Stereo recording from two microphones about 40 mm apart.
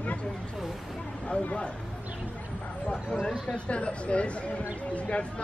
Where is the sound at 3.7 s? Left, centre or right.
Left.